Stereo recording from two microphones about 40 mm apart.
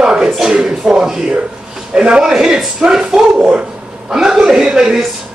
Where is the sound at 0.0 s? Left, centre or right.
Right.